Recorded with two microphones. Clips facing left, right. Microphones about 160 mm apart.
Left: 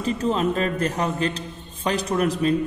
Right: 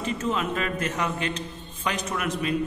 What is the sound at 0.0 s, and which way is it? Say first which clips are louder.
A man's voice: left 5 dB; 35° left (ahead or behind).